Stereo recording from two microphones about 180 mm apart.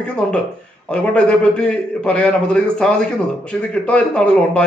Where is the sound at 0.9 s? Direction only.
5° left (ahead or behind).